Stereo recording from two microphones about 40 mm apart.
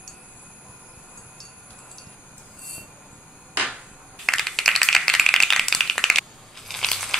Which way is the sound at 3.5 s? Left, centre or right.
Right.